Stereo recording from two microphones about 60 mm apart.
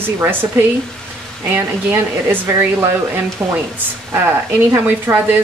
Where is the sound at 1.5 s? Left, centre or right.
Right.